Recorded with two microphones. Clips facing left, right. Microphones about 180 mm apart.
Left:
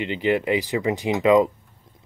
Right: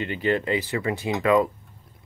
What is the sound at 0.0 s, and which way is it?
Speech, 15° left (ahead or behind).